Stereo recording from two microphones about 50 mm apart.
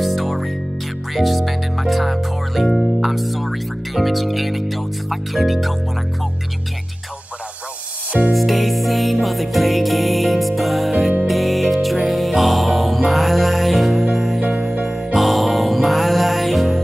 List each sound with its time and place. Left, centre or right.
0.0 s music: centre
1.1 s speech: centre
8.3 s music: centre
14.4 s music: centre
14.7 s music: centre